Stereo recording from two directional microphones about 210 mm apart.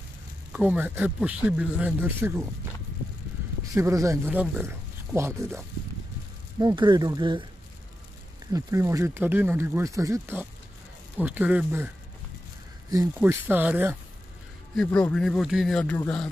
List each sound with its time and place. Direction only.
0.5 s speech: 5° right (ahead or behind)
3.7 s speech: 15° right (ahead or behind)
6.6 s speech: 20° right (ahead or behind)
8.5 s speech: 15° right (ahead or behind)
12.9 s speech: 15° right (ahead or behind)
14.8 s speech: 5° left (ahead or behind)